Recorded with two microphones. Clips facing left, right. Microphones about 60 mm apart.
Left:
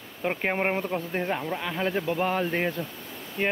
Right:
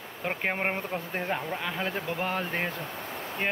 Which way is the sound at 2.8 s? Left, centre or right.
Right.